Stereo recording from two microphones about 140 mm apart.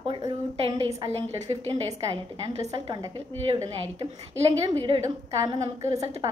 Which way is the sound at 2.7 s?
30° right (ahead or behind).